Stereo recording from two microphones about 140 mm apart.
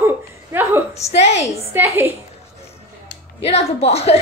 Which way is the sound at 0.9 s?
50° left (ahead or behind).